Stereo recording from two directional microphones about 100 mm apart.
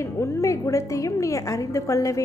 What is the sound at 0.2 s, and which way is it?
A woman's voice, 30° left (ahead or behind).